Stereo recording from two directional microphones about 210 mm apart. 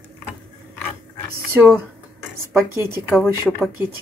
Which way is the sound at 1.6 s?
10° right (ahead or behind).